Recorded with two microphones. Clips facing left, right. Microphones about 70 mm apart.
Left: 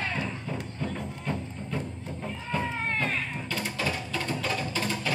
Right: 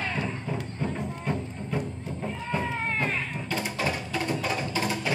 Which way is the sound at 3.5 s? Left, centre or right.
Right.